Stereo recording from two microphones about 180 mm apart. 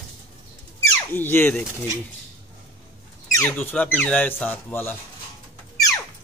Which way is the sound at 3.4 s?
10° left (ahead or behind).